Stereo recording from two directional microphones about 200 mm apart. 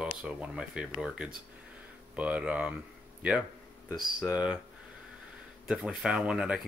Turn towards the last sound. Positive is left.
turn(degrees=-5)  # may be behind; listen again after turning